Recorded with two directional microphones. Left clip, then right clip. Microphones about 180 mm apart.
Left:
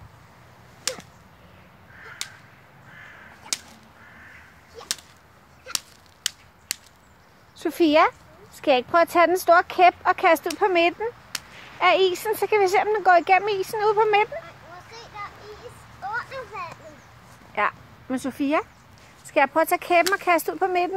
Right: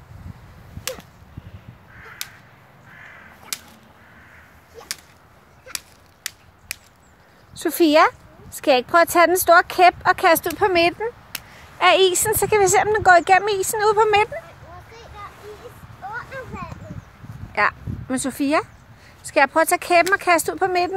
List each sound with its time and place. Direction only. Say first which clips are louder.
0.9 s whip: even; 20° right (ahead or behind)
2.2 s chop: right 1 dB; 35° right (ahead or behind)
3.5 s crow: left 2 dB; 35° right (ahead or behind)
4.8 s whip: left 2 dB; 10° right (ahead or behind)
6.2 s a sound: left 4 dB; 10° left (ahead or behind)
7.5 s speech: right 3 dB; 10° right (ahead or behind)
11.3 s speech: right 2 dB; 15° right (ahead or behind)
16.0 s a sound: left 1 dB; 10° right (ahead or behind)
17.6 s speech: right 4 dB; 10° right (ahead or behind)